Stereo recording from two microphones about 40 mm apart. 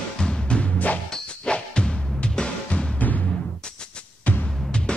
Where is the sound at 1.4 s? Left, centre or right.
Left.